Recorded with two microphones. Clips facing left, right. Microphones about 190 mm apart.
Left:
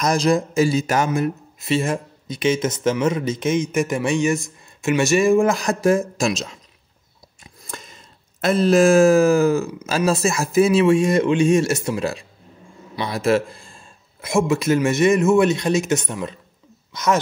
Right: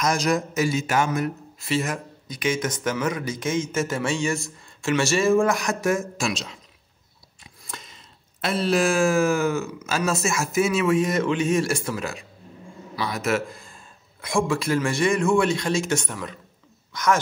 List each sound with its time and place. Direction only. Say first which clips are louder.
0.0 s speech: left 4 dB; 35° left (ahead or behind)
1.1 s speech: left 4 dB; 25° left (ahead or behind)
5.5 s speech: left 5 dB; 30° left (ahead or behind)
7.6 s speech: left 4 dB; 45° left (ahead or behind); by 17.2 s 20° left (ahead or behind)